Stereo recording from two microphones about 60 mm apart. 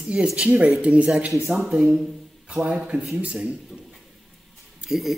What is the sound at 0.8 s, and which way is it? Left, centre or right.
Speech, centre.